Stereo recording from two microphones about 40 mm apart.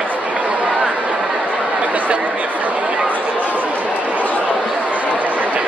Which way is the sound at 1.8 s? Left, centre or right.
Right.